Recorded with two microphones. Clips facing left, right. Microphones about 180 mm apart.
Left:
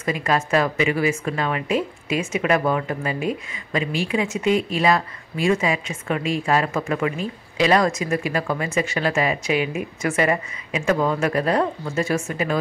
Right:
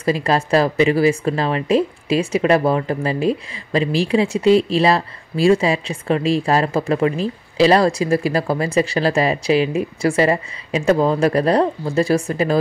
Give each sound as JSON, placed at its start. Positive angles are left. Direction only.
{"t": 0.0, "sound": "a woman's voice", "side_deg": -35}